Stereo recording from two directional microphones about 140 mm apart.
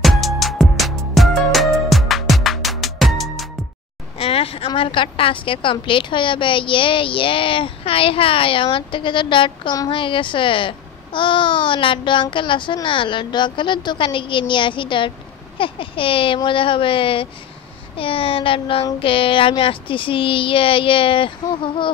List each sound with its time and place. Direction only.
0.0 s music: centre (ahead or behind)
4.2 s a woman's voice: 45° left (ahead or behind)